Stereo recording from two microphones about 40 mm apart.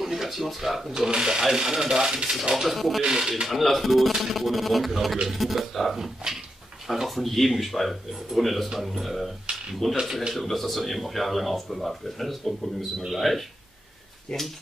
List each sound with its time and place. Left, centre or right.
0.0 s speech: centre
0.9 s speech: centre
2.5 s speech: centre
3.1 s speech: centre
3.4 s speech: centre
9.8 s speech: centre
14.3 s speech: centre